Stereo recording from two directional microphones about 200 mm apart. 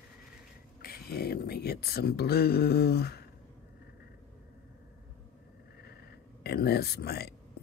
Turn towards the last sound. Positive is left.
turn(degrees=50)  # may be behind; listen again after turning